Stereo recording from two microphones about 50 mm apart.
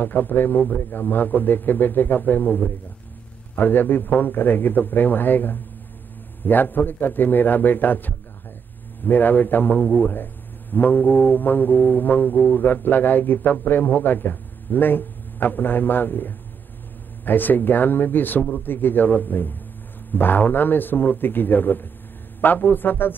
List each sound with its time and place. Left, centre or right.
0.0 s a man's voice: left